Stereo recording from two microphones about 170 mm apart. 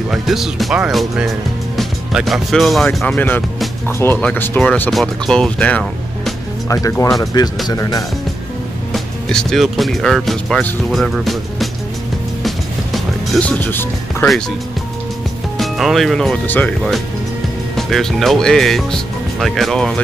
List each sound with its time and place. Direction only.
0.1 s speech: centre (ahead or behind)
6.7 s speech: 20° left (ahead or behind)
8.9 s speech: 5° left (ahead or behind)
12.4 s music: centre (ahead or behind)
15.5 s speech: centre (ahead or behind)